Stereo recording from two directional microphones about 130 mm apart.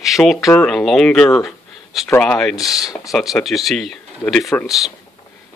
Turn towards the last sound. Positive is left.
turn(degrees=0)  # may be behind; listen again after turning